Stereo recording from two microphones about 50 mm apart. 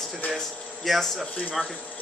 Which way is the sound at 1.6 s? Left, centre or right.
Left.